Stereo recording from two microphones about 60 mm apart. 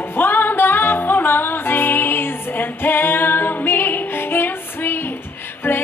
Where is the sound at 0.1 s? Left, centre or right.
Left.